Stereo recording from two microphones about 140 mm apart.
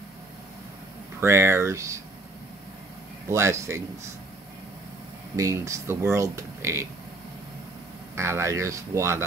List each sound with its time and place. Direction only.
1.2 s speech: 20° right (ahead or behind)
3.3 s speech: 20° right (ahead or behind)
5.3 s speech: 20° right (ahead or behind)
8.2 s speech: 20° right (ahead or behind)